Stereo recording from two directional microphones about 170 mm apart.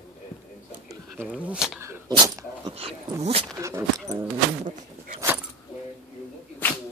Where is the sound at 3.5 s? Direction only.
20° right (ahead or behind).